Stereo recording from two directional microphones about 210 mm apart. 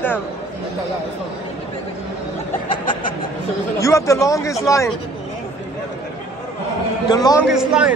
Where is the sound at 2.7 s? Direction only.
20° left (ahead or behind).